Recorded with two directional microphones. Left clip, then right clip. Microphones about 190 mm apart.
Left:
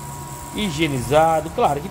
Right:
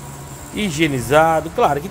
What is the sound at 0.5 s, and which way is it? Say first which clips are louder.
Speech: right 3 dB; 20° right (ahead or behind).